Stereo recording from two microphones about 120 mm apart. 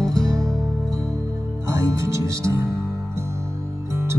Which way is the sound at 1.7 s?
25° right (ahead or behind).